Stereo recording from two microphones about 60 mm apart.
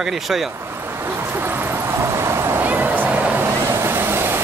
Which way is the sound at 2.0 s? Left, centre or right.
Right.